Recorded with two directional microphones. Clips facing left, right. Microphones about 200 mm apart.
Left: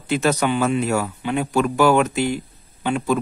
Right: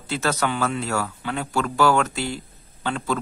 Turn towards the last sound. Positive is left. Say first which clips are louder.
# left 5 dB
turn(degrees=15)  # may be behind; listen again after turning